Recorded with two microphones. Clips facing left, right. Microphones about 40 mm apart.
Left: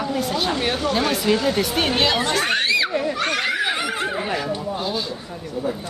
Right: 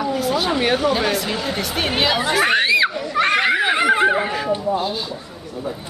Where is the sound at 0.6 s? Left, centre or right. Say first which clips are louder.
Right 3 dB; centre; by 4.8 s right.